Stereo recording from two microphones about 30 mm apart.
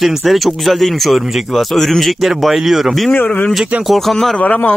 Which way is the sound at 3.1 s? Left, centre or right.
Left.